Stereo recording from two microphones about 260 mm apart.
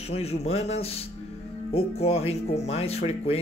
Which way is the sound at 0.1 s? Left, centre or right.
Left.